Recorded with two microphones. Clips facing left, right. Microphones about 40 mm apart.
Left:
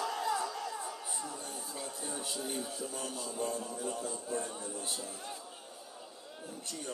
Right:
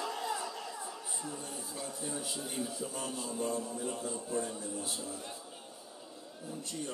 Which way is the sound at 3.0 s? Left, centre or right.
Right.